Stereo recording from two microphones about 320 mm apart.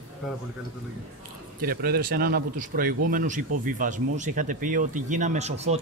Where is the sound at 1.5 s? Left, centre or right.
Right.